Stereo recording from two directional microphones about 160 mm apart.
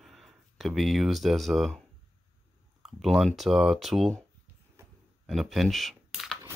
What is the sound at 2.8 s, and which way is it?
Speech, centre (ahead or behind).